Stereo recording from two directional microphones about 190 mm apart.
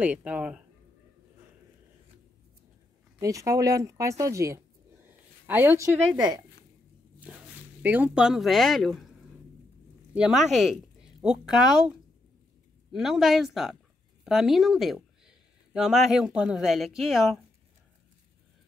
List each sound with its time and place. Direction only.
0.0 s speech: 5° right (ahead or behind)
3.2 s speech: 15° right (ahead or behind)
7.2 s speech: 5° right (ahead or behind)
10.1 s speech: 5° right (ahead or behind)
12.9 s speech: centre (ahead or behind)